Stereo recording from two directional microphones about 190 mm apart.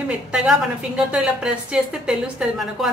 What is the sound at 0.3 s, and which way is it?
A woman's voice, 5° right (ahead or behind).